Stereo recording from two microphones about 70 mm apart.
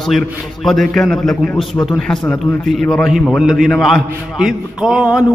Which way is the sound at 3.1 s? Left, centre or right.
Centre.